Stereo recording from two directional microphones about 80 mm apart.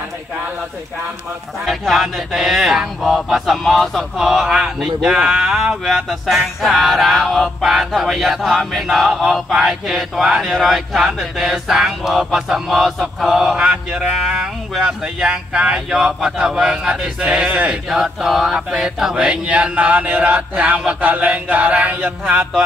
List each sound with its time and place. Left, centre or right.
1.7 s speech: centre
13.0 s mantra: centre
17.8 s mantra: centre